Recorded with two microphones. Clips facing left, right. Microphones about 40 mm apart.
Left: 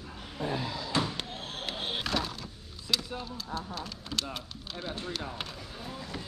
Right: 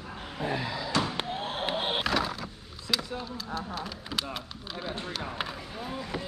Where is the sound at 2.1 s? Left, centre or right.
Centre.